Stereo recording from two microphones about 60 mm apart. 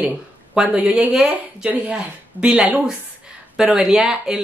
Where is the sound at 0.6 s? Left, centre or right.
Right.